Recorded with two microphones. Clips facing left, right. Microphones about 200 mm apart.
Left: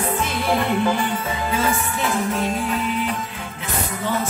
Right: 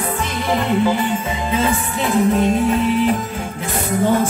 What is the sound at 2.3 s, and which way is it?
Music, 35° right (ahead or behind).